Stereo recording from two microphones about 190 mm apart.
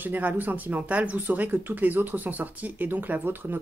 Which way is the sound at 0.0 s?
10° right (ahead or behind).